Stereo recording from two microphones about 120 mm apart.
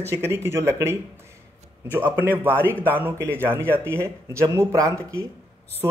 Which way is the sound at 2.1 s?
15° right (ahead or behind).